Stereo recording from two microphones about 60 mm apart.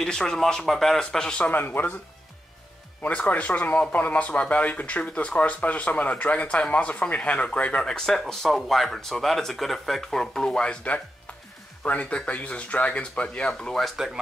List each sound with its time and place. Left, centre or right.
0.0 s speech: centre
1.4 s speech: left
3.0 s speech: left
13.5 s speech: centre